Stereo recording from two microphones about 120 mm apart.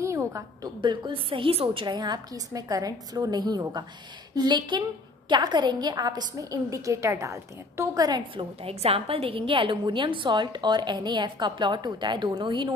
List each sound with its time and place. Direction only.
0.0 s a sound: 25° right (ahead or behind)
0.7 s a woman's voice: 40° right (ahead or behind)
8.6 s a woman's voice: 55° right (ahead or behind)